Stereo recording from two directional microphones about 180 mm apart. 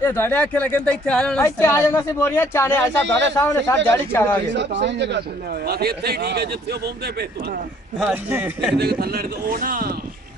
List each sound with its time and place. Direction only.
0.0 s speech: 10° left (ahead or behind)
3.1 s a man's voice: 80° right
3.3 s speech: 15° left (ahead or behind)
4.6 s speech: 75° right (ahead or behind)
5.7 s a man's voice: 60° right (ahead or behind)
8.0 s a man's voice: 10° right (ahead or behind)
8.7 s a man's voice: 60° right (ahead or behind)